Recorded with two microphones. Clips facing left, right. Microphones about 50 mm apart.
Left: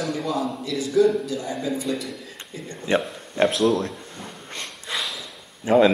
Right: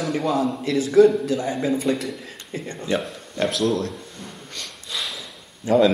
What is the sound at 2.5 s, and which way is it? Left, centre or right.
Speech, right.